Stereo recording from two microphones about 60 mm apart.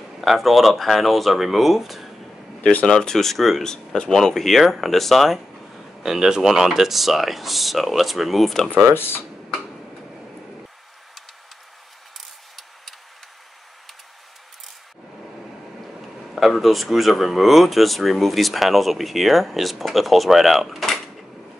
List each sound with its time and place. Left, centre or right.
0.2 s speech: centre
2.9 s speech: centre
8.9 s speech: left
16.3 s speech: centre